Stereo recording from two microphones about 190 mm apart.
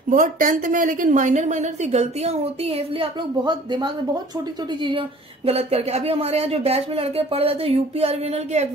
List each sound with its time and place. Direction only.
0.1 s a woman's voice: 45° right (ahead or behind)